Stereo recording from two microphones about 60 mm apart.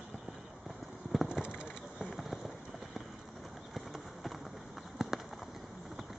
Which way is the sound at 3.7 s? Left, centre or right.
Centre.